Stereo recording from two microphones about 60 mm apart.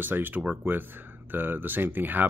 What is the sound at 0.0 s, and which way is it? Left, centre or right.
Speech, right.